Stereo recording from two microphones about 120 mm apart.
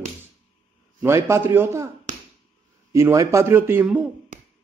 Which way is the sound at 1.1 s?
20° right (ahead or behind).